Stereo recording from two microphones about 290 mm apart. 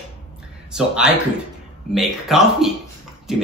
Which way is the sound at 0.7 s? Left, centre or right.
Centre.